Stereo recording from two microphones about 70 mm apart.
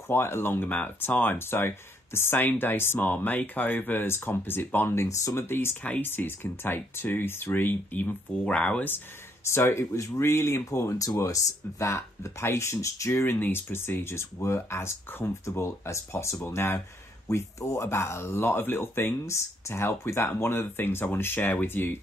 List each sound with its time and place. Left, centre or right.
0.1 s speech: left
5.3 s speech: left; by 8.8 s centre
9.5 s speech: left